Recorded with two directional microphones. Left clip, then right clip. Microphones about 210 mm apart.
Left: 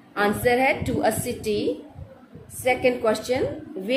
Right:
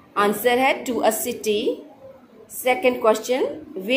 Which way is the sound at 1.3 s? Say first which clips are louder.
Right 3 dB; 25° left (ahead or behind).